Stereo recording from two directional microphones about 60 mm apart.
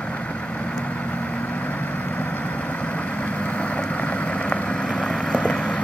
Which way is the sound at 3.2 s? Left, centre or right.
Left.